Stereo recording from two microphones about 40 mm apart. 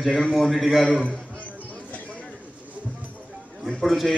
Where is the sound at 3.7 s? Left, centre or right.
Centre.